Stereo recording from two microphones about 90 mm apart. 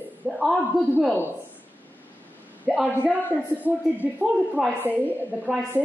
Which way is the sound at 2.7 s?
10° right (ahead or behind).